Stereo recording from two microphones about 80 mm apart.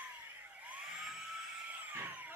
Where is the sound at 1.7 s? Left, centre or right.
Right.